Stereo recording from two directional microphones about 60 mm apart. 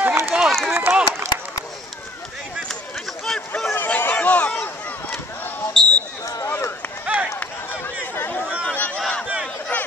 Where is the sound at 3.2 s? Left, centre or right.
Centre.